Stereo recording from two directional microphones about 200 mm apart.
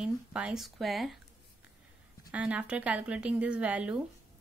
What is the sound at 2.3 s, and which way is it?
Speech, 5° right (ahead or behind).